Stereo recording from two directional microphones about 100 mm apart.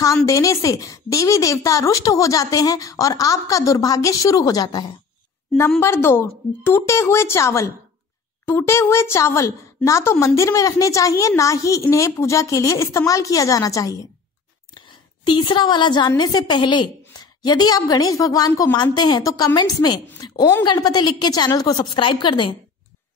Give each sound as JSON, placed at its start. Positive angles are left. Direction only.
{"t": 0.0, "sound": "a woman's voice", "side_deg": 35}
{"t": 5.8, "sound": "a woman's voice", "side_deg": 25}
{"t": 14.7, "sound": "a sound", "side_deg": 50}
{"t": 16.2, "sound": "a woman's voice", "side_deg": 45}